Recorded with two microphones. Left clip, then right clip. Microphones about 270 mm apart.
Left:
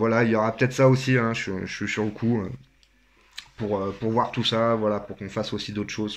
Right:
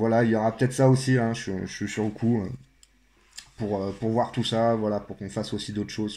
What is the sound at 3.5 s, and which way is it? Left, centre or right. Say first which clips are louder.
Speech: left 2 dB; left.